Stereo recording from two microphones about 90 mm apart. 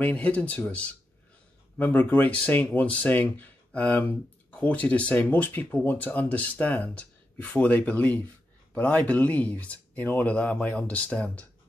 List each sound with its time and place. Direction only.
0.0 s speech: 15° left (ahead or behind)